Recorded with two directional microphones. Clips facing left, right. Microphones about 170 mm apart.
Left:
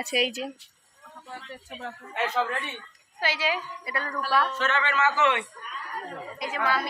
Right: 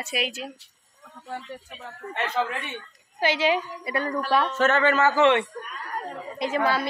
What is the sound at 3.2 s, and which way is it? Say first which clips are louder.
A woman's voice: right 6 dB; 20° right (ahead or behind).